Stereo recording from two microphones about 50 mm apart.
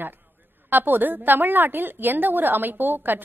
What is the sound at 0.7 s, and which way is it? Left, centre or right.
A woman's voice, right.